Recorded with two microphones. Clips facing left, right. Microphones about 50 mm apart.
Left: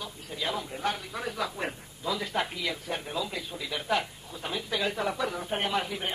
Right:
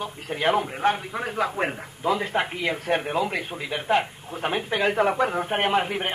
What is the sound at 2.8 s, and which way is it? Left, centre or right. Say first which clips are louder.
Speech: right 9 dB; right.